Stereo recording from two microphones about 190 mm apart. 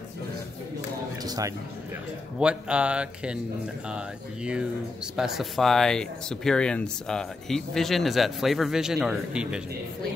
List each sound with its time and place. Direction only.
1.2 s speech: 20° right (ahead or behind)
2.3 s speech: 5° right (ahead or behind)
5.1 s speech: centre (ahead or behind)